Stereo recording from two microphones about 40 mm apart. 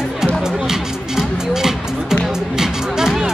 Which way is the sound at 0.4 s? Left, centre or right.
Centre.